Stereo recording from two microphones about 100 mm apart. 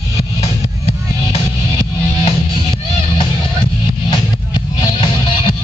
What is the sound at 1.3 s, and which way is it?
Music, 80° left.